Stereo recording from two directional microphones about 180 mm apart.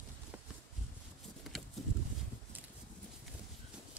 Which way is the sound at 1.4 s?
Centre (ahead or behind).